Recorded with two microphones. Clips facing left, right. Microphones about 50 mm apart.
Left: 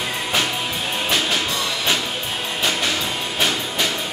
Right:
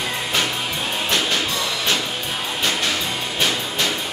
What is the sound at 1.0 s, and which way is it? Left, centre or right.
Music, centre.